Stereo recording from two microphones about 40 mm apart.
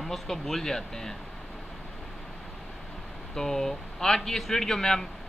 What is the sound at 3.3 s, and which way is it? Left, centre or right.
A man's voice, centre.